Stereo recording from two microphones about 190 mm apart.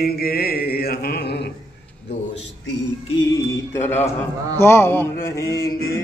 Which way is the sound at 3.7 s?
10° left (ahead or behind).